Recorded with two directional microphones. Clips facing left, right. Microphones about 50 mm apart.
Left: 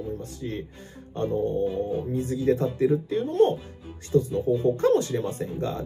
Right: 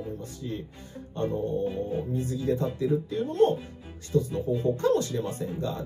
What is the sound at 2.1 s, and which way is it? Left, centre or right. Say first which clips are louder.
Speech: left 5 dB; left.